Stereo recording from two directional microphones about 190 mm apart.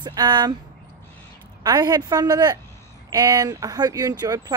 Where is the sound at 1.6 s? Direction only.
20° right (ahead or behind).